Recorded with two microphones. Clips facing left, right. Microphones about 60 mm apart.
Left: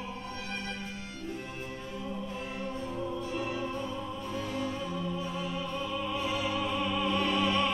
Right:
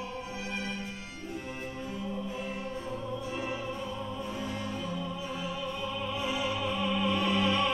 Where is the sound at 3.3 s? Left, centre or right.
Centre.